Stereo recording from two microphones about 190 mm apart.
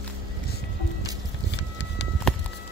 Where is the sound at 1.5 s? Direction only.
65° left (ahead or behind).